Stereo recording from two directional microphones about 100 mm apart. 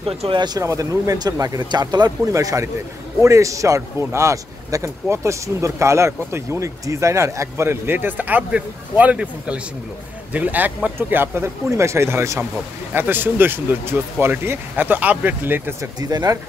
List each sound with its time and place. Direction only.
0.0 s speech: 60° right (ahead or behind)
0.6 s speech: 35° right (ahead or behind)
16.0 s speech: 40° right (ahead or behind)